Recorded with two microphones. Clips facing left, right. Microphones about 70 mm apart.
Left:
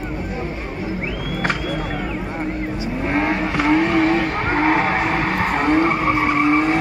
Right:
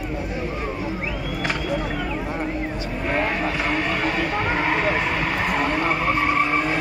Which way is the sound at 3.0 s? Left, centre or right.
Left.